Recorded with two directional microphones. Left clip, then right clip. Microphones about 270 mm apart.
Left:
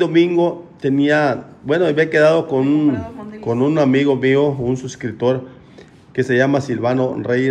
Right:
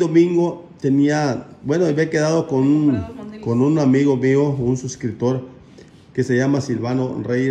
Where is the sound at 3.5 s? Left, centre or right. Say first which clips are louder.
Left 2 dB; centre.